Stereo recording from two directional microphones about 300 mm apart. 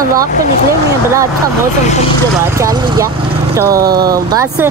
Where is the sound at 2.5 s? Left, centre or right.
Centre.